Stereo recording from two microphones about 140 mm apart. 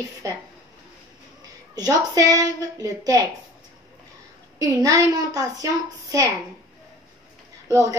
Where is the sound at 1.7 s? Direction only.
25° right (ahead or behind).